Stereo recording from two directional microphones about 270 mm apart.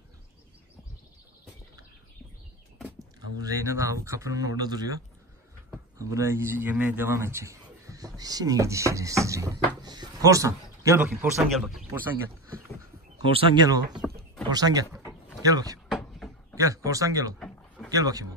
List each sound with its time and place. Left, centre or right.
3.0 s a man's voice: centre
13.3 s a man's voice: centre
15.9 s a sound: centre
16.5 s a man's voice: centre
17.4 s a sound: centre
17.9 s a man's voice: centre